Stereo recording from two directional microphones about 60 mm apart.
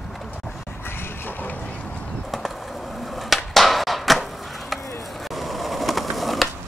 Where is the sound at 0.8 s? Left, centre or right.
Left.